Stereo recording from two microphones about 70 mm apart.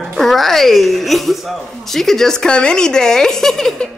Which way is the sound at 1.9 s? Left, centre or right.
Centre.